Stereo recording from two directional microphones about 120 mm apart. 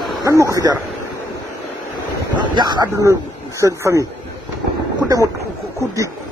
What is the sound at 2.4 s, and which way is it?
Speech, 35° right (ahead or behind).